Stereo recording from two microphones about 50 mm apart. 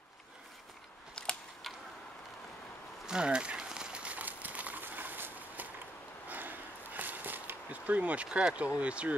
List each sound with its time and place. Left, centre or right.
1.2 s scissors: centre
3.1 s a sound: centre
8.7 s speech: right